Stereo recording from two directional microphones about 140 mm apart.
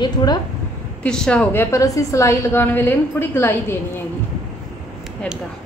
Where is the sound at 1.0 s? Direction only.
5° left (ahead or behind).